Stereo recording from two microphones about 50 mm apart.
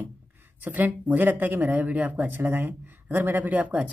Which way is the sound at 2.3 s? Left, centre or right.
Right.